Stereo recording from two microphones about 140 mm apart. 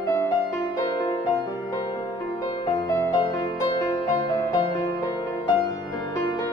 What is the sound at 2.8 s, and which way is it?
Music, 20° left (ahead or behind).